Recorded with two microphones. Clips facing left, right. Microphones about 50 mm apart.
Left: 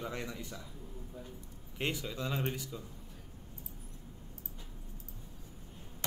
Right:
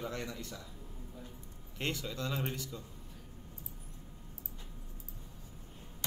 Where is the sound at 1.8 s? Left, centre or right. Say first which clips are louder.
Left 1 dB; centre.